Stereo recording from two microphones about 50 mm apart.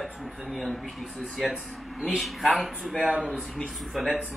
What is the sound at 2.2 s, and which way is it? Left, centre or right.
Speech, centre.